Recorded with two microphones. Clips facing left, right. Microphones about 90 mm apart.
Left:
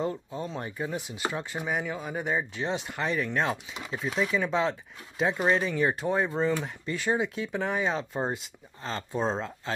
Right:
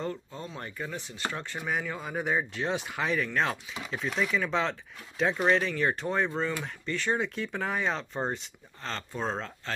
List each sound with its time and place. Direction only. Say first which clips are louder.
0.0 s speech: left 4 dB; 15° left (ahead or behind)
9.1 s speech: left 5 dB; 20° left (ahead or behind)